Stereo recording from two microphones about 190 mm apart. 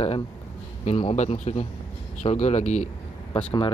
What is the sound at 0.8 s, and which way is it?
A man's voice, 35° left (ahead or behind).